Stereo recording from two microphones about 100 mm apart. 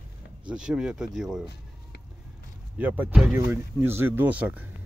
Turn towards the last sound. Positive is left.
turn(degrees=-15)  # may be behind; listen again after turning